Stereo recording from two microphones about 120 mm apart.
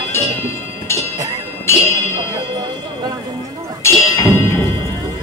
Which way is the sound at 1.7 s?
20° left (ahead or behind).